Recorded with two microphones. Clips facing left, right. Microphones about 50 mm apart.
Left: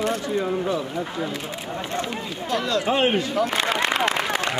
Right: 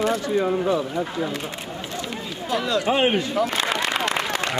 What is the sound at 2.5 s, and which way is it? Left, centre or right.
Speech, centre.